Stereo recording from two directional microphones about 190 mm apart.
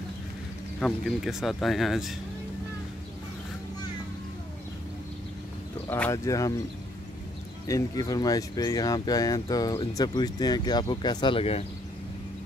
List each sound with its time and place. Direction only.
0.7 s speech: centre (ahead or behind)
5.9 s speech: 10° left (ahead or behind)
7.6 s speech: 20° left (ahead or behind)